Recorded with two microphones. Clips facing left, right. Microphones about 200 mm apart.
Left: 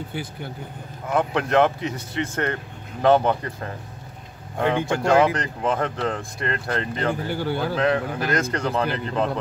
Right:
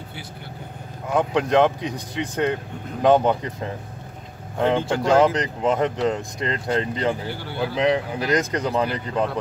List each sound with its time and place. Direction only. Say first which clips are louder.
1.1 s speech: right 1 dB; 15° right (ahead or behind)
4.9 s speech: even; 20° right (ahead or behind)
7.2 s speech: left 3 dB; 45° left (ahead or behind)
7.7 s speech: right 4 dB; 15° right (ahead or behind)